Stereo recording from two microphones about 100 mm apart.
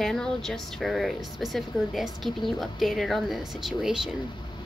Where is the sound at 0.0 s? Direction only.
5° left (ahead or behind).